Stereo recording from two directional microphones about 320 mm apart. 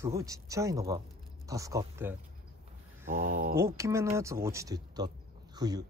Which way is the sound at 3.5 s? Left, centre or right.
Centre.